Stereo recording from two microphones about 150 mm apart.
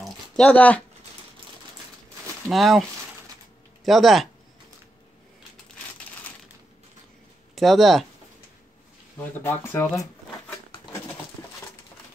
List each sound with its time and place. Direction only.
0.0 s dog: 5° left (ahead or behind)
2.4 s speech: centre (ahead or behind)
3.8 s speech: centre (ahead or behind)
7.5 s speech: centre (ahead or behind)
9.2 s speech: 15° left (ahead or behind)